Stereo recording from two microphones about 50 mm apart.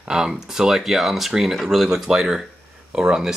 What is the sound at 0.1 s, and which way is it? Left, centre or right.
Speech, centre.